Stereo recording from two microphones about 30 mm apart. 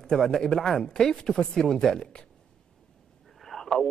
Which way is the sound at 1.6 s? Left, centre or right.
Left.